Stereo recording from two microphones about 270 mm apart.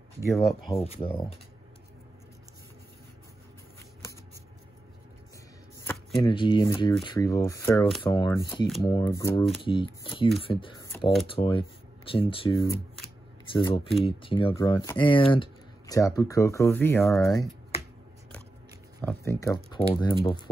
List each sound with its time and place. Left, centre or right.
0.4 s speech: centre
5.9 s speech: centre
19.0 s speech: centre